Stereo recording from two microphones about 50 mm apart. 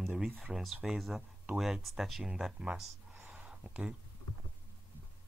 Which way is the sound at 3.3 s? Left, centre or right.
Right.